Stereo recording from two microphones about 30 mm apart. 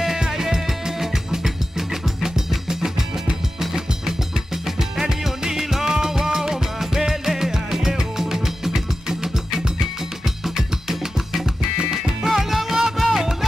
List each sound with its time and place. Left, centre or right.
0.3 s music: centre
4.6 s music: centre
11.8 s music: right
12.3 s music: centre